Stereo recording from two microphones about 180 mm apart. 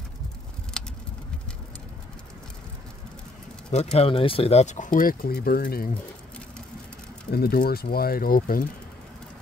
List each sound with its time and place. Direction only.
0.8 s a sound: 5° left (ahead or behind)
3.7 s speech: 35° left (ahead or behind); by 5.9 s 55° left (ahead or behind)
7.2 s speech: 60° left (ahead or behind)